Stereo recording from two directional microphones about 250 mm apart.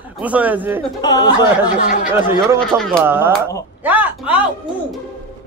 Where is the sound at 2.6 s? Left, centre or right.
Centre.